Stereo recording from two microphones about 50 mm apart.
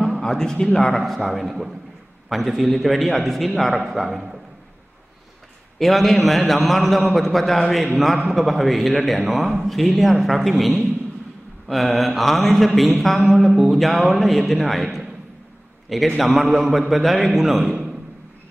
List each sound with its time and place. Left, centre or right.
0.2 s a man's voice: centre
0.9 s mantra: centre
5.8 s mantra: centre